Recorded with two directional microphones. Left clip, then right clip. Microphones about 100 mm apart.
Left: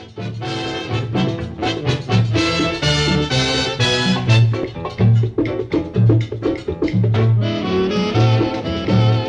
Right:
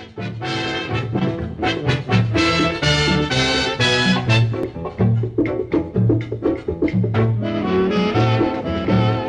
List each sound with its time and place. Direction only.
0.5 s music: 15° left (ahead or behind)
4.6 s music: 25° left (ahead or behind)